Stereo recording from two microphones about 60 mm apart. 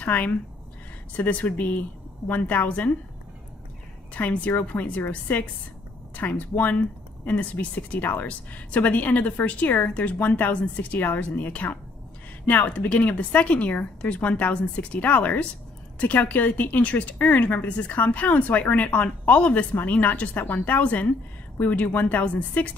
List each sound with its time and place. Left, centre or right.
0.0 s a woman's voice: left
4.1 s a woman's voice: left